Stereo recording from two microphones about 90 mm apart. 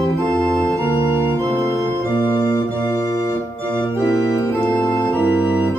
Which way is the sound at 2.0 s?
55° left (ahead or behind).